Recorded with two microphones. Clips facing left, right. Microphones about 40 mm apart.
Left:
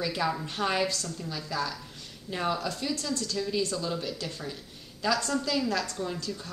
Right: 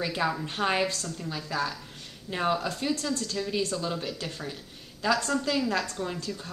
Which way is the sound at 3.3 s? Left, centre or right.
Centre.